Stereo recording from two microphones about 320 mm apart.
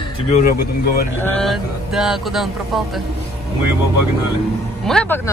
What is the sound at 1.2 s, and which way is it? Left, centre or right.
Speech, centre.